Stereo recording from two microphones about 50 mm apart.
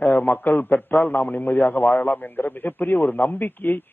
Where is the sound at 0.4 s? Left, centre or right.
Left.